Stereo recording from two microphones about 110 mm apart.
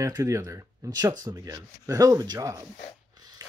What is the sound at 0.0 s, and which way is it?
Speech, 30° right (ahead or behind).